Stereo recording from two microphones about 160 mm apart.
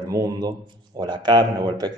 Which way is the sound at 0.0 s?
20° right (ahead or behind).